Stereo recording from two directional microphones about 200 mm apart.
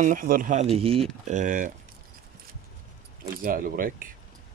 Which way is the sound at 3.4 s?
45° right (ahead or behind).